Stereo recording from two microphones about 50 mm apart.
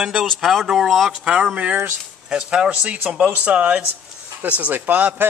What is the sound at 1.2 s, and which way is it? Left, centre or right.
Speech, centre.